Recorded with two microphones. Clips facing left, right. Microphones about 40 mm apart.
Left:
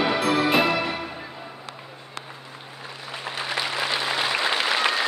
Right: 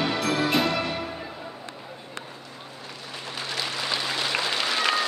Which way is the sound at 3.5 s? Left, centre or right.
Left.